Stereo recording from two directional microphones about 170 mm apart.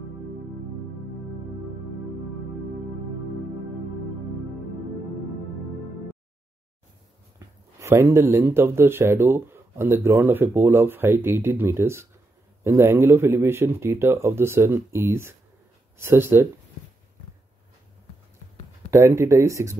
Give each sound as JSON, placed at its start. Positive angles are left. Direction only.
{"t": 7.3, "sound": "speech", "side_deg": -15}
{"t": 18.9, "sound": "speech", "side_deg": -15}